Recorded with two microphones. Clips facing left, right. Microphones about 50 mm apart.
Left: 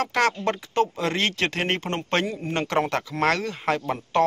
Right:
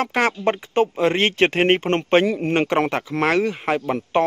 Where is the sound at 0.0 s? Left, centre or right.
Right.